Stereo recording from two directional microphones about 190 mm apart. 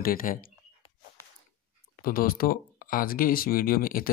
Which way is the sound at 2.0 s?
50° left (ahead or behind).